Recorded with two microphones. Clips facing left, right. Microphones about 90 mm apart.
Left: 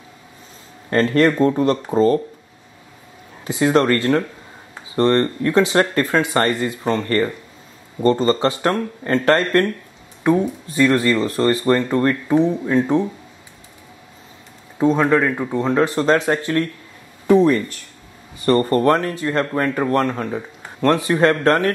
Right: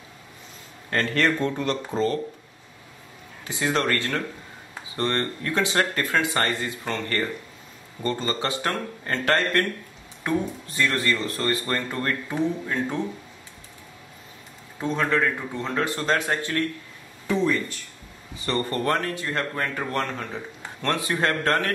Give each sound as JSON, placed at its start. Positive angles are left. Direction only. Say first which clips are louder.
{"t": 0.8, "sound": "speech", "louder": "left 8 dB", "side_deg": 35}
{"t": 3.4, "sound": "speech", "louder": "left 9 dB", "side_deg": 30}
{"t": 14.8, "sound": "speech", "louder": "left 8 dB", "side_deg": 25}
{"t": 17.3, "sound": "speech", "louder": "left 10 dB", "side_deg": 50}